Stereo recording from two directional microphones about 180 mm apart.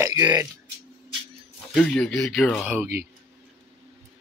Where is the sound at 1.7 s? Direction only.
5° left (ahead or behind).